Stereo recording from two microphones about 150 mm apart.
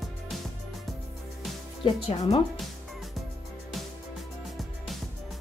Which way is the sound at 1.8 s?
40° left (ahead or behind).